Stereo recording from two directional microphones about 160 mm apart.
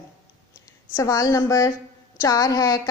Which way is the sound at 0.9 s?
20° left (ahead or behind).